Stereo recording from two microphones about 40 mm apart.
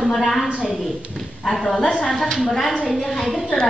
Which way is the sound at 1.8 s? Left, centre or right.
Left.